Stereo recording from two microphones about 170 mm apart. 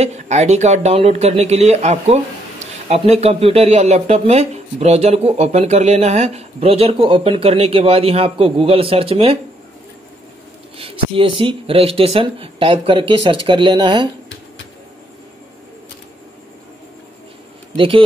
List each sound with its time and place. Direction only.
0.0 s speech: 40° right (ahead or behind)
10.8 s speech: 30° right (ahead or behind)
17.7 s speech: 30° right (ahead or behind)